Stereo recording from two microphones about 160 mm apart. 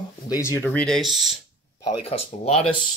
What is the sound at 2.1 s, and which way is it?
Speech, 40° left (ahead or behind).